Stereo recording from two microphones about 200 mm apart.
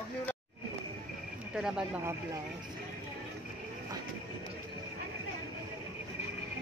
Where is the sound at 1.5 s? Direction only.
5° right (ahead or behind).